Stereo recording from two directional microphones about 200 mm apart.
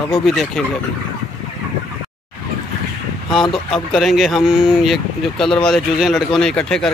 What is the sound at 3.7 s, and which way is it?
Speech, centre (ahead or behind).